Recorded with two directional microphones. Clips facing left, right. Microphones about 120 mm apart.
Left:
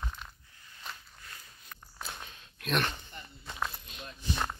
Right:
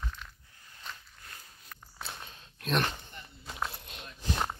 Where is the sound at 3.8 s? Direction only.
65° right (ahead or behind).